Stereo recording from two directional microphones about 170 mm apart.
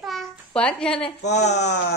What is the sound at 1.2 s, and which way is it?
Speech, 85° left.